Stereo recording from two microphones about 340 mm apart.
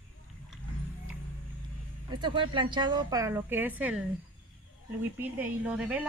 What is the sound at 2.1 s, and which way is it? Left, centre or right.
A woman's voice, centre.